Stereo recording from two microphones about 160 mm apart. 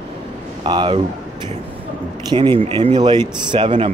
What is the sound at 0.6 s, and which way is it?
Speech, 30° right (ahead or behind).